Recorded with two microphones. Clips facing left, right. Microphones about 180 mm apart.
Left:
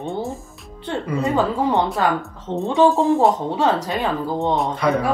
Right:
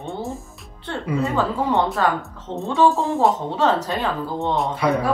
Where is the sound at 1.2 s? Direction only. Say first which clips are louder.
Left 3 dB; 15° left (ahead or behind).